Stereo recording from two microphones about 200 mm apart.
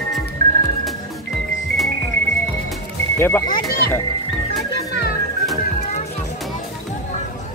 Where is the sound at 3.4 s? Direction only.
45° left (ahead or behind).